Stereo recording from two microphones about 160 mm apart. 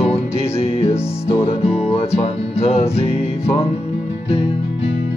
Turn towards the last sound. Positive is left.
turn(degrees=40)  # may be behind; listen again after turning